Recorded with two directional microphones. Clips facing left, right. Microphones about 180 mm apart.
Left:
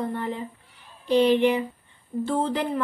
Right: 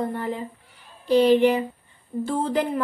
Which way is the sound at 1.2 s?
45° right (ahead or behind).